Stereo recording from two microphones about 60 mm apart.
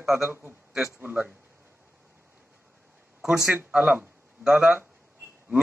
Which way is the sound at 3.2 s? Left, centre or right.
Centre.